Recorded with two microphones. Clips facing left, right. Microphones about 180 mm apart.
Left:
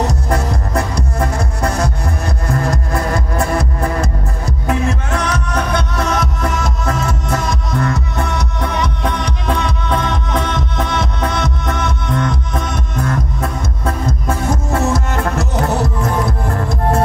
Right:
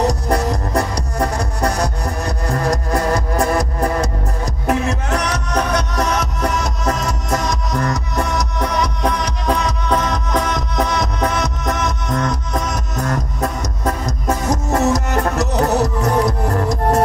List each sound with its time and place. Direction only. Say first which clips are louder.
0.0 s music: right 1 dB; 35° right (ahead or behind)